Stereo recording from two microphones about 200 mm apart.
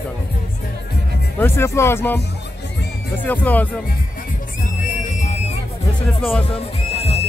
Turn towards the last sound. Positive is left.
turn(degrees=30)  # may be behind; listen again after turning